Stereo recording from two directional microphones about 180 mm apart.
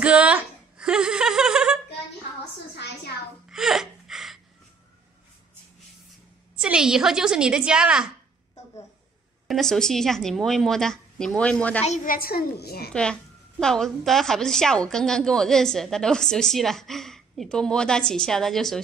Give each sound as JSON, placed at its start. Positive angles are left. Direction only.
{"t": 0.0, "sound": "speech", "side_deg": -5}
{"t": 3.4, "sound": "gasp", "side_deg": 0}
{"t": 6.6, "sound": "a woman's voice", "side_deg": -5}
{"t": 9.5, "sound": "a woman's voice", "side_deg": 0}
{"t": 11.8, "sound": "a child's voice", "side_deg": 45}
{"t": 12.9, "sound": "a woman's voice", "side_deg": 5}